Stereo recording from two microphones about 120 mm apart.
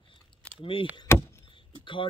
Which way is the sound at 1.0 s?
20° left (ahead or behind).